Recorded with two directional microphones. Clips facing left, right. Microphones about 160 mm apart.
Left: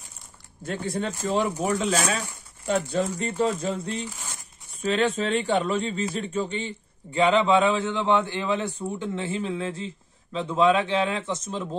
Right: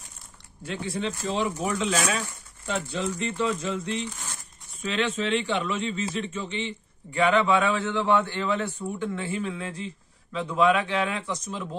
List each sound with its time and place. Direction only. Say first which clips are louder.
0.7 s speech: left 2 dB; 45° left (ahead or behind)
1.6 s speech: left 2 dB; 40° left (ahead or behind)
7.1 s a man's voice: left 2 dB; 25° left (ahead or behind)